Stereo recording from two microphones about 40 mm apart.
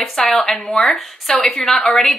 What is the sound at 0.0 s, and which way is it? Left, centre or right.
A woman's voice, centre.